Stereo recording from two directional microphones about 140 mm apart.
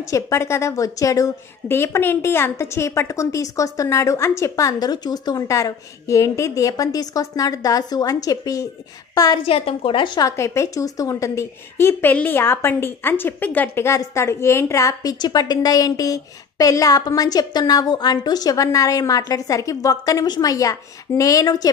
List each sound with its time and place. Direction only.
0.1 s a woman's voice: 20° left (ahead or behind)
9.5 s a woman's voice: 45° left (ahead or behind); by 21.6 s 25° left (ahead or behind)